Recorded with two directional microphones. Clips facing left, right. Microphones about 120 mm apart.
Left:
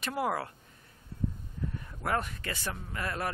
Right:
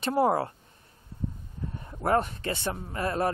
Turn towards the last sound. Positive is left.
turn(degrees=-30)  # may be behind; listen again after turning